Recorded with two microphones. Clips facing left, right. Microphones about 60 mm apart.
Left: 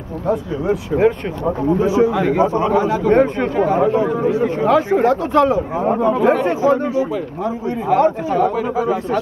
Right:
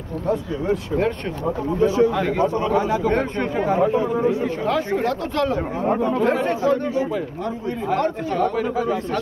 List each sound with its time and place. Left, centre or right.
0.3 s a man's voice: centre